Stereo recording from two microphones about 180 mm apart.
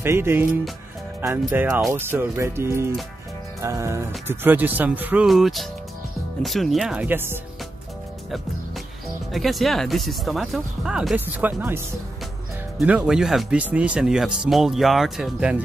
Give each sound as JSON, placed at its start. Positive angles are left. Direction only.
{"t": 0.0, "sound": "speech", "side_deg": -15}
{"t": 9.3, "sound": "speech", "side_deg": 0}